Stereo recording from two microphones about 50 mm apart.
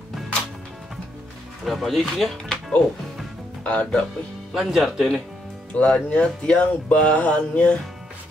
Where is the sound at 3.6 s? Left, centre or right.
Left.